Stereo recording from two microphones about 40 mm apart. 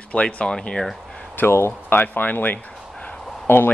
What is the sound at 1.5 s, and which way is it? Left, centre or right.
Speech, left.